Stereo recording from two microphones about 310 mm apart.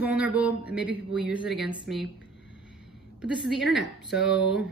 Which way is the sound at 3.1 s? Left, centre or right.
Centre.